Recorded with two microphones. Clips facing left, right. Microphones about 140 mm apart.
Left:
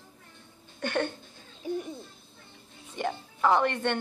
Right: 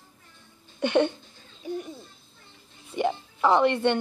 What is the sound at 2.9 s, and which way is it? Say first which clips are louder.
Speech: right 6 dB; 15° right (ahead or behind).